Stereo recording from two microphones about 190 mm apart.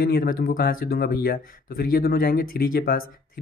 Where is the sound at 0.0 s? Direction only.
50° left (ahead or behind).